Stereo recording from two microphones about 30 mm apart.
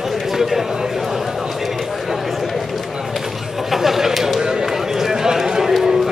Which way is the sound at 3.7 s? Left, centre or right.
Centre.